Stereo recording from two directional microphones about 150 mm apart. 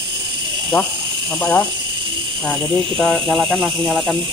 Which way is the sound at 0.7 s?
15° left (ahead or behind).